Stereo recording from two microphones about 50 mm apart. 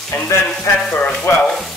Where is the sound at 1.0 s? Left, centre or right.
Left.